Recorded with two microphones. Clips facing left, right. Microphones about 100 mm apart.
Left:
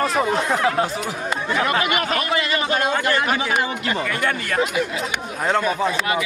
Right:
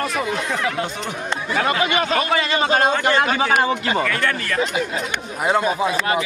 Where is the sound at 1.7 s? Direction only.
25° right (ahead or behind).